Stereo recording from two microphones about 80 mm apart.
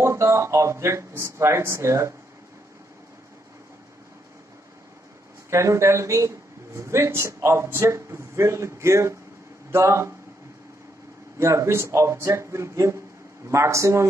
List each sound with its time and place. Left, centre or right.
0.0 s speech: right
5.5 s speech: right
11.3 s speech: right